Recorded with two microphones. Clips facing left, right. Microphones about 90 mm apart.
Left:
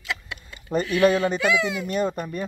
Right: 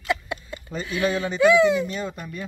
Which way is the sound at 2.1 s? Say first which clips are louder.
Left 6 dB; 20° left (ahead or behind).